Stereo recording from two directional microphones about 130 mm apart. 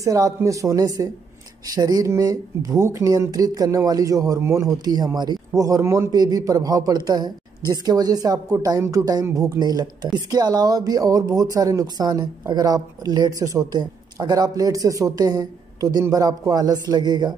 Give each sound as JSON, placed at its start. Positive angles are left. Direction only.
{"t": 0.0, "sound": "speech", "side_deg": -25}